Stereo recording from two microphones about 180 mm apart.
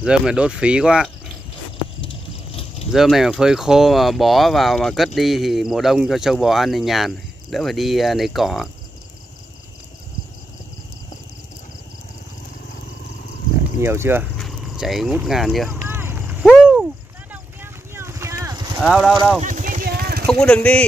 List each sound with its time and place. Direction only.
0.0 s speech: 5° right (ahead or behind)
2.9 s speech: centre (ahead or behind)
13.7 s speech: 15° right (ahead or behind)
14.4 s speech: centre (ahead or behind)
15.9 s horse: 10° right (ahead or behind)
16.4 s a sound: centre (ahead or behind)
17.3 s vehicle: 10° right (ahead or behind)
18.8 s speech: centre (ahead or behind)
19.4 s a sound: 45° right (ahead or behind)
20.2 s speech: 5° left (ahead or behind)